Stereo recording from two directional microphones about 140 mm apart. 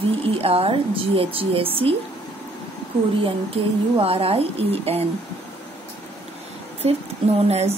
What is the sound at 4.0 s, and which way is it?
Speech, 45° right (ahead or behind).